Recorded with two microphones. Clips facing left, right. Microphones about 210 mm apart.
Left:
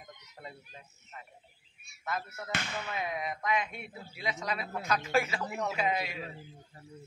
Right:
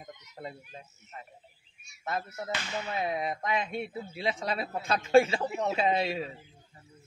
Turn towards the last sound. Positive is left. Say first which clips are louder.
# right 5 dB
turn(degrees=-30)  # may be behind; listen again after turning